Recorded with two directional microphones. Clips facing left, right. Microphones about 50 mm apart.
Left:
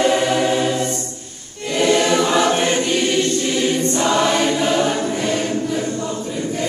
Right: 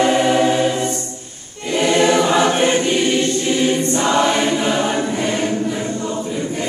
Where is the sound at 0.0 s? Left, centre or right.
Centre.